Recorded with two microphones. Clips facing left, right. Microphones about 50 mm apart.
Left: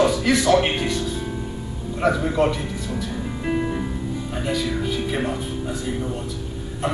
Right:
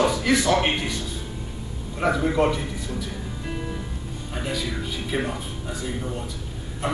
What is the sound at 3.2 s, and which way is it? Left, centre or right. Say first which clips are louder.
Music: left 8 dB; left.